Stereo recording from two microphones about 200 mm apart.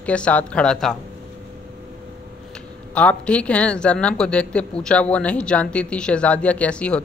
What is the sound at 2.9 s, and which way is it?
A woman's voice, 5° left (ahead or behind).